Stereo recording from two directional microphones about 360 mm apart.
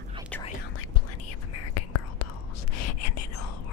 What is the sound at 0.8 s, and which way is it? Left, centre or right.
Whispering, left.